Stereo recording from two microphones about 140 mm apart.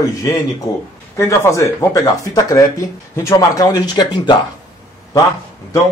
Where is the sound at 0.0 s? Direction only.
25° left (ahead or behind).